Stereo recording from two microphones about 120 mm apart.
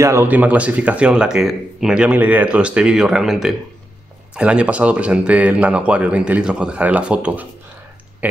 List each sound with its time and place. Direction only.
0.0 s speech: 20° right (ahead or behind)